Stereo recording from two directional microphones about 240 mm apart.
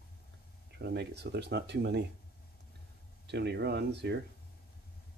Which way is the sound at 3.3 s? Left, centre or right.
Right.